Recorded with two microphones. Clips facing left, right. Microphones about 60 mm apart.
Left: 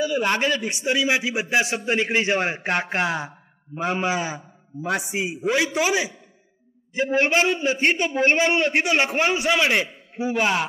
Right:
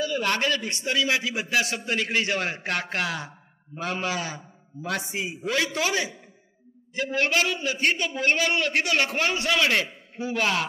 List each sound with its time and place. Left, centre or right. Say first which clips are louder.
0.0 s a man's voice: left 3 dB; centre